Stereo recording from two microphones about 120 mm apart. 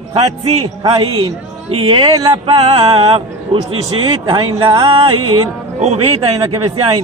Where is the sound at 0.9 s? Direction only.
50° right (ahead or behind).